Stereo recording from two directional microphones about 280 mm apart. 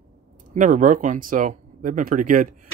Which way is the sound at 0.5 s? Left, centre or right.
Right.